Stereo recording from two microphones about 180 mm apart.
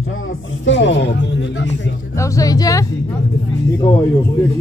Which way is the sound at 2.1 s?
15° left (ahead or behind).